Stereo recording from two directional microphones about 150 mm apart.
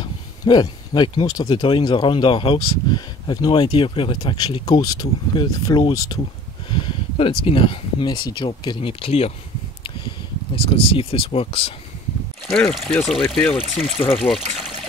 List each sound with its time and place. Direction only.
0.0 s speech: 30° left (ahead or behind)
10.5 s speech: 40° left (ahead or behind)
12.4 s speech: centre (ahead or behind)